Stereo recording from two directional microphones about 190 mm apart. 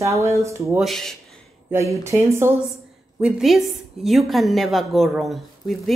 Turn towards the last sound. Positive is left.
turn(degrees=0)  # may be behind; listen again after turning